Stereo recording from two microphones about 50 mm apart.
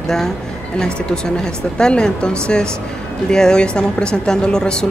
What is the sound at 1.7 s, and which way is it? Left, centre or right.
A woman's voice, centre.